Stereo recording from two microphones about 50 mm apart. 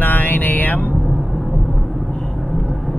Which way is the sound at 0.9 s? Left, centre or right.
Centre.